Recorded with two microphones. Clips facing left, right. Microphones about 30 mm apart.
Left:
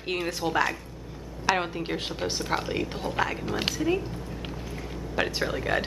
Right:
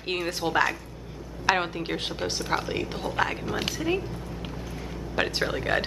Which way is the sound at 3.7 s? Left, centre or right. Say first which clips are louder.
Left 1 dB; centre.